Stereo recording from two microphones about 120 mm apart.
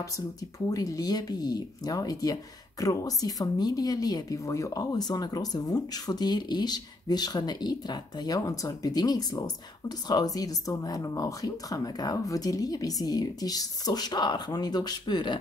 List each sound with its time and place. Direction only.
0.7 s speech: 30° left (ahead or behind)